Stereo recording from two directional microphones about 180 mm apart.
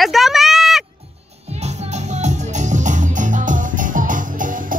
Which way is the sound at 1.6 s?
40° right (ahead or behind).